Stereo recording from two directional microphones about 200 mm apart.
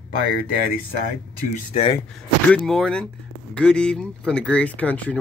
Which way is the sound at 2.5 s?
5° left (ahead or behind).